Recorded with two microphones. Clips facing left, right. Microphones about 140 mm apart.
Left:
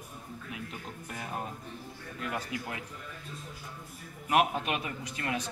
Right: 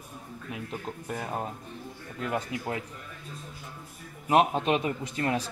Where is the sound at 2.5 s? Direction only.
25° right (ahead or behind).